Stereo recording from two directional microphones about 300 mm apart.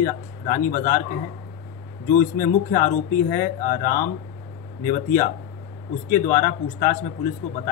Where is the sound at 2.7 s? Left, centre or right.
Left.